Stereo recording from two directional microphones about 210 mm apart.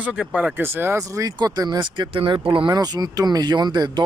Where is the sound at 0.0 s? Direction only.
5° right (ahead or behind).